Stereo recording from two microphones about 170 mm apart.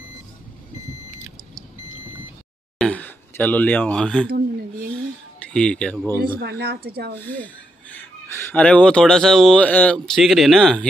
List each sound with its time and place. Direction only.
2.8 s a sound: 10° left (ahead or behind)
5.4 s speech: 5° left (ahead or behind)
6.4 s a woman's voice: 70° right (ahead or behind)
7.2 s speech: 10° left (ahead or behind)